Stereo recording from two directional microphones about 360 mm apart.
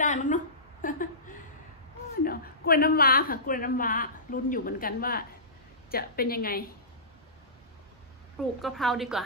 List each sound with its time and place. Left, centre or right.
0.0 s a sound: left
2.2 s a woman's voice: left
8.5 s a woman's voice: centre